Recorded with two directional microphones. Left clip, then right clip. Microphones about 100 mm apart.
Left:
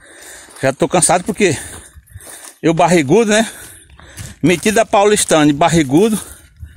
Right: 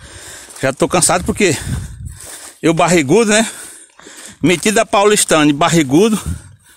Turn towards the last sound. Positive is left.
turn(degrees=-35)  # may be behind; listen again after turning